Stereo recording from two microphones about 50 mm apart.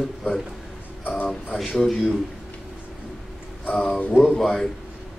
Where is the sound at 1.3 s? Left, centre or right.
Centre.